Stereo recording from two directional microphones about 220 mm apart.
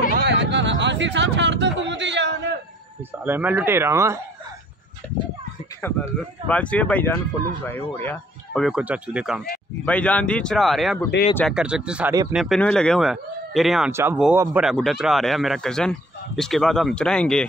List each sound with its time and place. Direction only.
0.1 s a sound: 50° right (ahead or behind)
3.3 s speech: 10° right (ahead or behind)
5.8 s speech: 10° left (ahead or behind)